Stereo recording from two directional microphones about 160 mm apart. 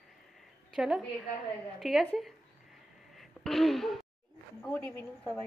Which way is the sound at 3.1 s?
Centre (ahead or behind).